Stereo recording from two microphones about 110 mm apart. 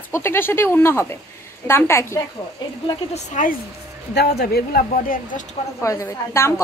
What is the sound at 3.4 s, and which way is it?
Speech, 90° left.